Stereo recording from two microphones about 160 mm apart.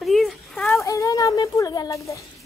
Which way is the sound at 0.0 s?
Centre (ahead or behind).